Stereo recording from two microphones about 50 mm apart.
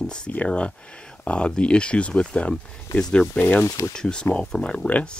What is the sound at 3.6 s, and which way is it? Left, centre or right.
Speech, left.